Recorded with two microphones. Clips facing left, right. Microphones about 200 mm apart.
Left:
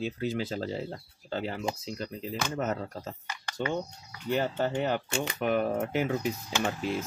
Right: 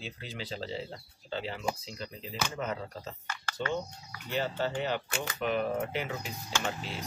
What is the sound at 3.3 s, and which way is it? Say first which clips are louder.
Speech: left 2 dB; 15° left (ahead or behind).